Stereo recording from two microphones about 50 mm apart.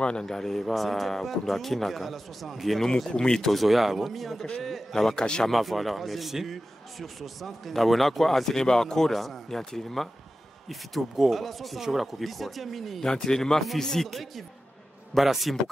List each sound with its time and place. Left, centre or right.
0.0 s a man's voice: centre
3.1 s a man's voice: centre
5.1 s speech: centre
5.5 s a man's voice: centre
13.0 s a man's voice: centre